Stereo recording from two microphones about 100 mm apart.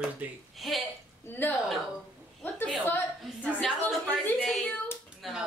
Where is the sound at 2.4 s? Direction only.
20° left (ahead or behind).